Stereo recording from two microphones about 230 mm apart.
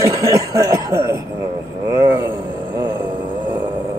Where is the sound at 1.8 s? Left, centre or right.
Centre.